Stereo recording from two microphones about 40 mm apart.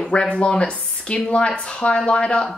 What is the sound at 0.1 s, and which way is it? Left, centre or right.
Speech, left.